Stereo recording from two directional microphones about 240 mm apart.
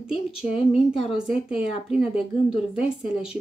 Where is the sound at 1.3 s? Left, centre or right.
Left.